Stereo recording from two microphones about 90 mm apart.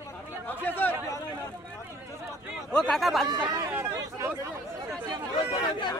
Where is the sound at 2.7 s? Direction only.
5° left (ahead or behind).